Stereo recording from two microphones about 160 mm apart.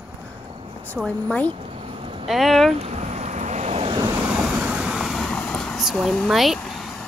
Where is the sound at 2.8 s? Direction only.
45° right (ahead or behind).